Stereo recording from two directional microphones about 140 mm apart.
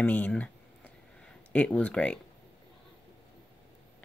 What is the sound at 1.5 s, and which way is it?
Speech, 10° left (ahead or behind).